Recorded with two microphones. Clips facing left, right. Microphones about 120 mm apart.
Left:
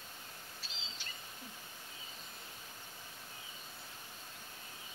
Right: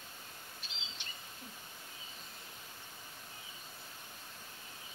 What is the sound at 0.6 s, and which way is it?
Bird vocalization, 20° right (ahead or behind).